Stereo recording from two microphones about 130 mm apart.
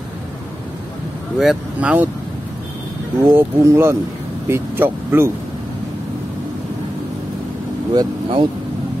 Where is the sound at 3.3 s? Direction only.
20° right (ahead or behind).